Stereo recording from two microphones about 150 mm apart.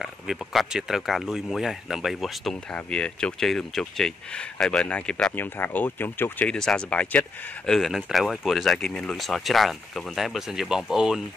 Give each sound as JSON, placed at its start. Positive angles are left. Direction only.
{"t": 0.0, "sound": "speech", "side_deg": 0}